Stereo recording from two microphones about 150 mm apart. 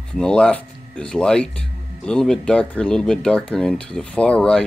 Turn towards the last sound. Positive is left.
turn(degrees=5)  # may be behind; listen again after turning